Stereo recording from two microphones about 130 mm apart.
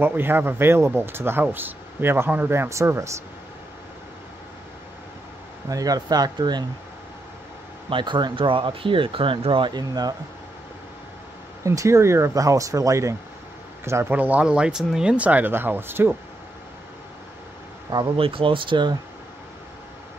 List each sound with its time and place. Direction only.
0.0 s speech: 15° right (ahead or behind)
5.7 s speech: 30° right (ahead or behind)
7.9 s speech: 35° right (ahead or behind)
11.6 s speech: 25° right (ahead or behind)
18.1 s speech: 45° right (ahead or behind)